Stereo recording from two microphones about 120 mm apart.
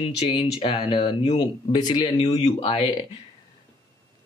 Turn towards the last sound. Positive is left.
turn(degrees=55)  # may be behind; listen again after turning